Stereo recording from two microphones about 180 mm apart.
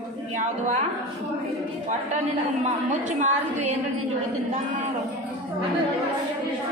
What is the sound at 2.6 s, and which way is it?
A woman's voice, 40° right (ahead or behind).